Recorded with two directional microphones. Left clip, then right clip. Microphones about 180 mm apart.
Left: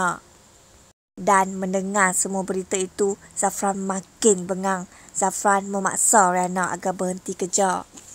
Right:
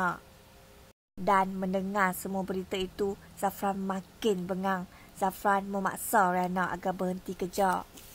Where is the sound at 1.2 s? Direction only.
30° left (ahead or behind).